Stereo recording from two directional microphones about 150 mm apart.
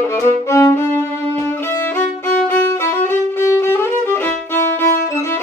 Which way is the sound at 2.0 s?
15° left (ahead or behind).